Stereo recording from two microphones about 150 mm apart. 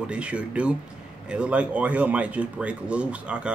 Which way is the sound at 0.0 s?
10° right (ahead or behind).